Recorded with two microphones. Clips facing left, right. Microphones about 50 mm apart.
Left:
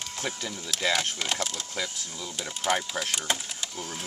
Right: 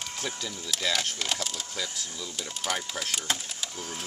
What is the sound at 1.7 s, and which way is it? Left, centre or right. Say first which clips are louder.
Speech: left 3 dB; left.